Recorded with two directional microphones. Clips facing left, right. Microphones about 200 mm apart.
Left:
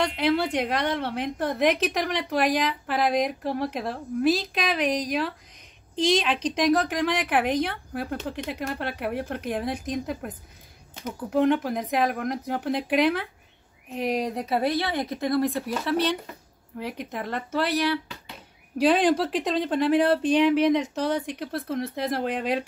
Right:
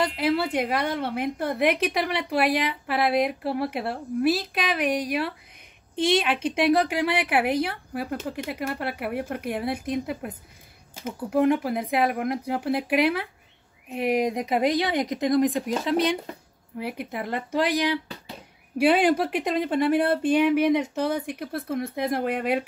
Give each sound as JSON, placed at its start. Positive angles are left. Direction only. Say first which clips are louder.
{"t": 0.0, "sound": "a woman's voice", "louder": "even", "side_deg": -5}